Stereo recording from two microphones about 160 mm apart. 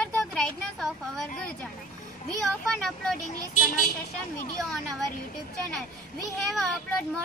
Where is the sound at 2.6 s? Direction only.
5° left (ahead or behind).